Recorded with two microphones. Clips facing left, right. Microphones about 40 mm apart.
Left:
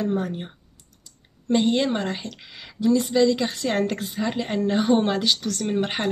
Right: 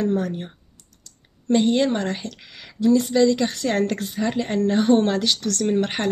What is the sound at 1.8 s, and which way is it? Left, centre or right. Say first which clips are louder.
Speech: right 2 dB; centre.